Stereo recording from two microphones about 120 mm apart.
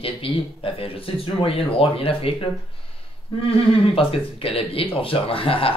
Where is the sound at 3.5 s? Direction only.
50° left (ahead or behind).